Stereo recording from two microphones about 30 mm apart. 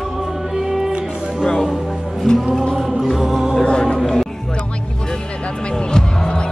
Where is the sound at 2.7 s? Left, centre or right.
Centre.